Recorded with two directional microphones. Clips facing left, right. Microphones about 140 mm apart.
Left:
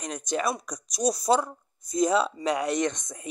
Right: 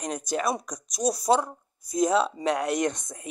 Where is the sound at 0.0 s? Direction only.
5° right (ahead or behind).